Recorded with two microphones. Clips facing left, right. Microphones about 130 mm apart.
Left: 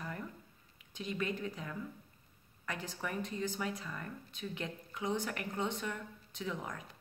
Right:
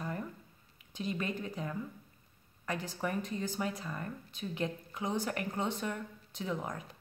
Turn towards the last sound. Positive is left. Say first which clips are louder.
# right 3 dB
turn(degrees=-30)  # may be behind; listen again after turning